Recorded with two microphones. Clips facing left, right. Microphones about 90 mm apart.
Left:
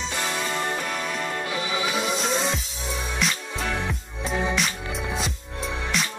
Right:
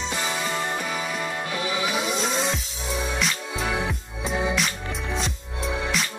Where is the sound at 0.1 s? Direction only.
5° right (ahead or behind).